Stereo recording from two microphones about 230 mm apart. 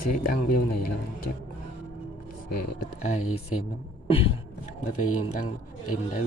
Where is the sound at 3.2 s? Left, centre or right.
Left.